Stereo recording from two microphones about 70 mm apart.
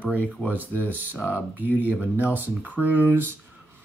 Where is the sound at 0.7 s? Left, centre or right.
Left.